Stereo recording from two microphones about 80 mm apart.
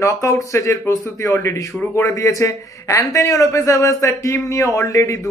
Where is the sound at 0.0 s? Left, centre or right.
Left.